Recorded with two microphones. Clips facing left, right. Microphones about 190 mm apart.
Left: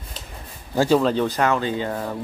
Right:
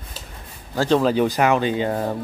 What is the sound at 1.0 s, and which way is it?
Speech, 10° right (ahead or behind).